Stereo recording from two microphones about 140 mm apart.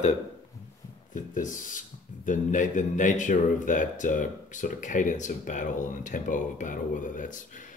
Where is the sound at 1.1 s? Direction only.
70° left (ahead or behind).